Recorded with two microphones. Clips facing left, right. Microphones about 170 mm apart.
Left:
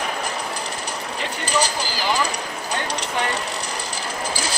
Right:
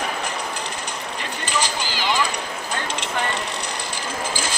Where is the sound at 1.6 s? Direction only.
40° left (ahead or behind).